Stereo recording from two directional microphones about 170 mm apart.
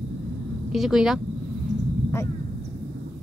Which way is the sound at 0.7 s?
Centre (ahead or behind).